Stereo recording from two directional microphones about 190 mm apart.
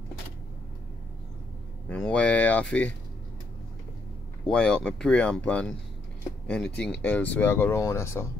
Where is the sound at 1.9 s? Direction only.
5° left (ahead or behind).